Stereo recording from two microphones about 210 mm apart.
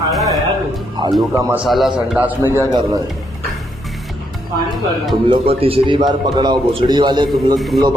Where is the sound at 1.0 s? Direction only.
20° right (ahead or behind).